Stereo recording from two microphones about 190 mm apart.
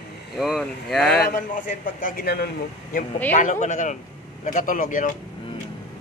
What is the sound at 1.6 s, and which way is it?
Speech, 45° left (ahead or behind).